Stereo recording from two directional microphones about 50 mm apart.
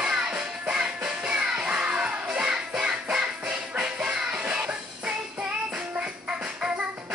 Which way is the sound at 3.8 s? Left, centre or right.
Centre.